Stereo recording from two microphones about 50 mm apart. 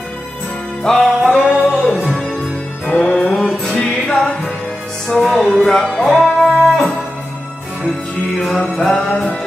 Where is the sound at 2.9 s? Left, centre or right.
Left.